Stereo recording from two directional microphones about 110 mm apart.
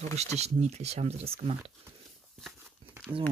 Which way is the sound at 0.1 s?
80° right.